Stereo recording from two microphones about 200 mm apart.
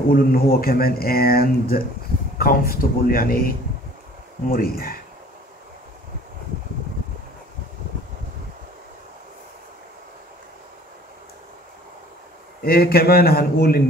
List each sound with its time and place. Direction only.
0.1 s speech: 50° left (ahead or behind)
12.6 s speech: 50° left (ahead or behind)